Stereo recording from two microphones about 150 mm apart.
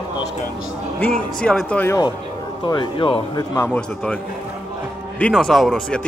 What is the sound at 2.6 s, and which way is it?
Speech, 30° left (ahead or behind).